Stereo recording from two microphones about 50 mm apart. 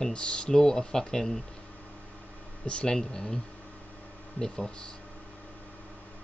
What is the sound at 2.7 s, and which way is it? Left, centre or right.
Speech, centre.